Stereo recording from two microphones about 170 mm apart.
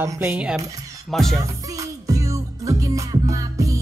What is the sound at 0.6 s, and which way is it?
Music, 20° right (ahead or behind).